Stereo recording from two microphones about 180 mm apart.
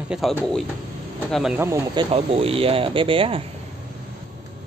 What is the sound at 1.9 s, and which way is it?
Speech, 30° right (ahead or behind).